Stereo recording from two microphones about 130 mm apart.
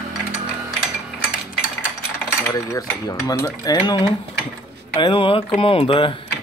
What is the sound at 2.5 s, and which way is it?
Cutlery, 25° left (ahead or behind).